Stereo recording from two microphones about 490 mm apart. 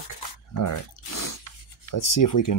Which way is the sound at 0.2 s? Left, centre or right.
Left.